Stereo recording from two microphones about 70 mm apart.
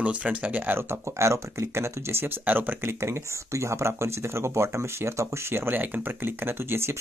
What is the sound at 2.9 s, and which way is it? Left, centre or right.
Speech, right.